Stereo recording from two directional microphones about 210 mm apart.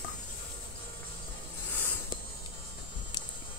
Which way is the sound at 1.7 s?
10° left (ahead or behind).